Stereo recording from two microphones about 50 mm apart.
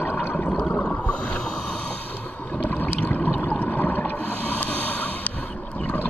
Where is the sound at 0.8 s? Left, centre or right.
Centre.